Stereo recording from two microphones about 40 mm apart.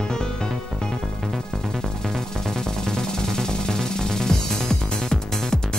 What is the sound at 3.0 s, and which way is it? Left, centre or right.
Music, centre.